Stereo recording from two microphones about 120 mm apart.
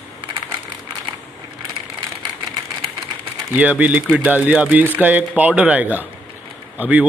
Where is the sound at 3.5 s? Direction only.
15° right (ahead or behind).